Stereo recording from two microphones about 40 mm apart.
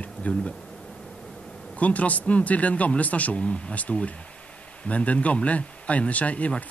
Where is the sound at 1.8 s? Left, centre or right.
Left.